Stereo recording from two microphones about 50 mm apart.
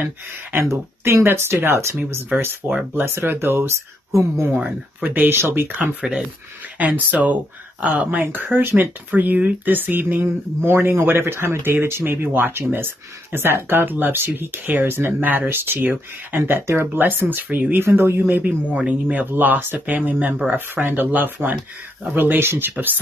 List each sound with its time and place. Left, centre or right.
0.0 s speech: right
0.6 s speech: right
4.1 s speech: right
5.0 s speech: right
6.0 s speech: centre
6.8 s speech: right
17.8 s speech: right
18.2 s speech: right
19.3 s speech: right